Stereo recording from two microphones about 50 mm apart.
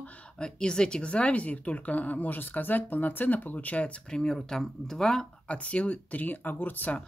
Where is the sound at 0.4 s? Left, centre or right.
Centre.